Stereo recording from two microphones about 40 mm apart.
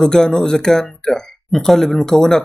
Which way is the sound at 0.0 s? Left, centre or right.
Centre.